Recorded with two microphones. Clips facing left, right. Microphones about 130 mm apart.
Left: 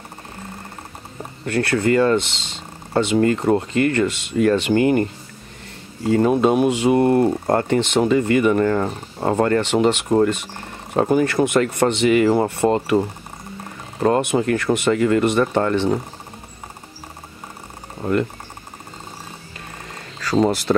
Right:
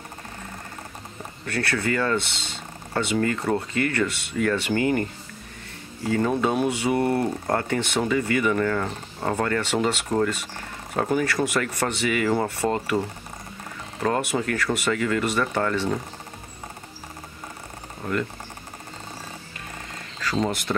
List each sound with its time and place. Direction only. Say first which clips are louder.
1.4 s speech: left 7 dB; 25° left (ahead or behind)
6.0 s speech: left 7 dB; 20° left (ahead or behind)
14.0 s speech: left 7 dB; 25° left (ahead or behind)
18.0 s a sound: left 7 dB; 30° left (ahead or behind)
20.2 s speech: left 7 dB; 35° left (ahead or behind)